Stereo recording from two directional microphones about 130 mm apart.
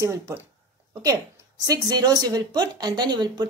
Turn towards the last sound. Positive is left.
turn(degrees=-35)  # may be behind; listen again after turning